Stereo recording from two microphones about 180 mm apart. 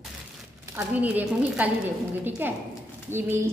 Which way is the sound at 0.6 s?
10° right (ahead or behind).